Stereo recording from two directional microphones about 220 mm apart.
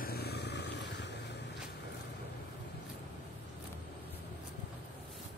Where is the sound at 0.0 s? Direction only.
45° left (ahead or behind).